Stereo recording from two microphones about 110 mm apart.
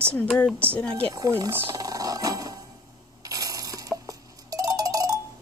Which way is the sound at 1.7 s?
35° right (ahead or behind).